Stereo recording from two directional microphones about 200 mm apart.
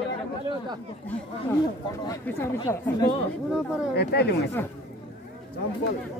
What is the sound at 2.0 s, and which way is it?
Speech, 10° left (ahead or behind).